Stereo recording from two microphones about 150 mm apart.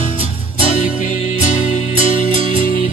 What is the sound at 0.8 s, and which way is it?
Music, 55° left (ahead or behind).